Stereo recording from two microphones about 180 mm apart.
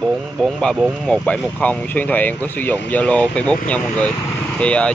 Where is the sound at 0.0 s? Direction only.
Centre (ahead or behind).